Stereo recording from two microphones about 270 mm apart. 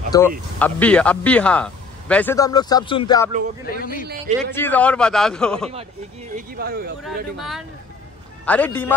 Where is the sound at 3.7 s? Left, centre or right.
Left.